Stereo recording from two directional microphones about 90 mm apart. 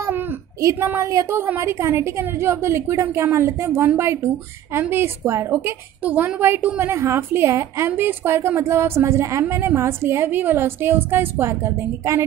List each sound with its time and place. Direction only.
0.6 s a woman's voice: 35° right (ahead or behind)